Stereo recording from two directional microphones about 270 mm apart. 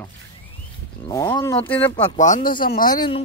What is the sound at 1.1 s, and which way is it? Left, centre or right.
Speech, centre.